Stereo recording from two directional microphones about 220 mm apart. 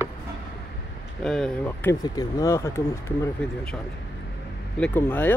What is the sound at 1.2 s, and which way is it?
Speech, 5° left (ahead or behind).